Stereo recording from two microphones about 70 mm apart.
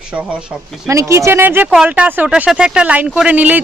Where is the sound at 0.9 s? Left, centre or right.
Right.